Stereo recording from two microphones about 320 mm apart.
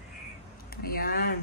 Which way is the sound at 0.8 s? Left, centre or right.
Left.